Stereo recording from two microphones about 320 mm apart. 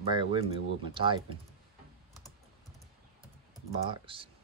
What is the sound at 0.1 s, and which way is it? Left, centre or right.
Speech, centre.